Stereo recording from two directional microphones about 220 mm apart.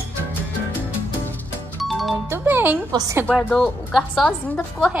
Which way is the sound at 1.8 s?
Centre (ahead or behind).